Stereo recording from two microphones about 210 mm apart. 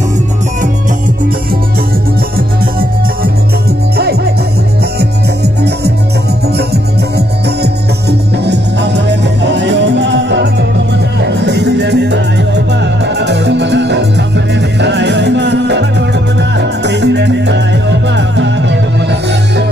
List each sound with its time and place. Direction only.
3.9 s music: 50° right (ahead or behind)